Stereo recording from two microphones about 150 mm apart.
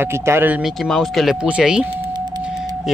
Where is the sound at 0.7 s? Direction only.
Centre (ahead or behind).